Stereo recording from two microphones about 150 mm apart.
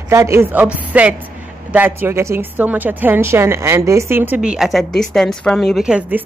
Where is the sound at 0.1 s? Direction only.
20° right (ahead or behind).